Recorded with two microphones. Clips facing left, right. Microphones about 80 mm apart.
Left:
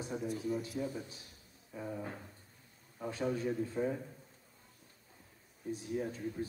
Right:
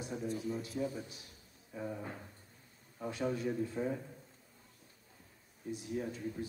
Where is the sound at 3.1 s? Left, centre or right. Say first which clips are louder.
Left 1 dB; left.